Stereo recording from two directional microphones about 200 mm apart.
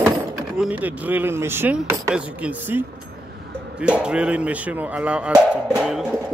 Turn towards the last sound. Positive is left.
turn(degrees=-5)  # may be behind; listen again after turning